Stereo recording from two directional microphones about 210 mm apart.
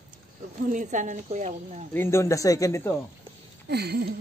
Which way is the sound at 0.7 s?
35° right (ahead or behind).